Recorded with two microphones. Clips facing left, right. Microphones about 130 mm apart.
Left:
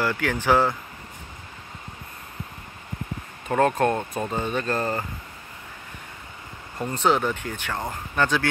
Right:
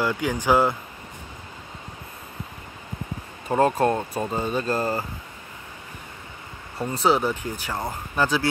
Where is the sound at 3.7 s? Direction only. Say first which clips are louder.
Right 1 dB; 10° right (ahead or behind).